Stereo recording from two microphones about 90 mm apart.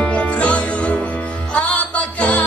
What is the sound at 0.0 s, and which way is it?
Music, 15° left (ahead or behind).